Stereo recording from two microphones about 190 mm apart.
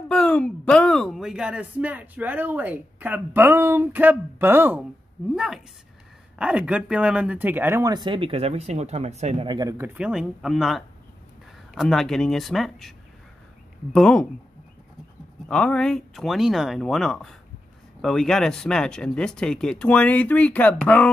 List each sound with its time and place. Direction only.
0.1 s speech: 5° left (ahead or behind); by 9.8 s 20° right (ahead or behind)
9.9 s speech: 5° right (ahead or behind)
13.9 s speech: 5° left (ahead or behind)
15.4 s speech: 5° left (ahead or behind)